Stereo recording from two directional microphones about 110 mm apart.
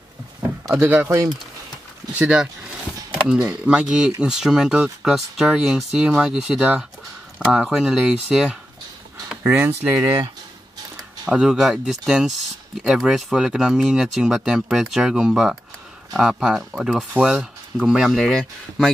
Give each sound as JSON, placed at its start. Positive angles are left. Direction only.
{"t": 0.7, "sound": "speech", "side_deg": -20}
{"t": 2.1, "sound": "speech", "side_deg": -10}
{"t": 9.4, "sound": "speech", "side_deg": -20}
{"t": 11.2, "sound": "speech", "side_deg": -5}